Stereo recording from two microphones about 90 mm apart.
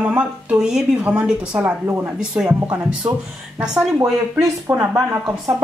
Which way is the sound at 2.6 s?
20° right (ahead or behind).